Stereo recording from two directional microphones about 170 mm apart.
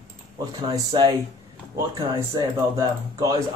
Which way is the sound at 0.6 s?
25° right (ahead or behind).